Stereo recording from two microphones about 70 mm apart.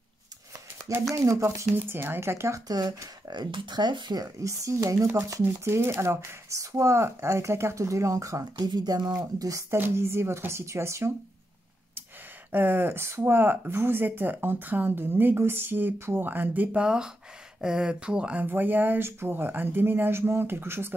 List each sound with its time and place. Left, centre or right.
1.1 s speech: right
1.8 s speech: right
2.7 s speech: right
4.4 s speech: right
5.4 s speech: right
8.5 s speech: right
9.8 s speech: right
12.4 s speech: right
16.7 s speech: centre; by 20.9 s right